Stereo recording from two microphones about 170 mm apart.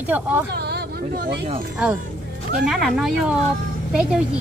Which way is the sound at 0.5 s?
75° right (ahead or behind).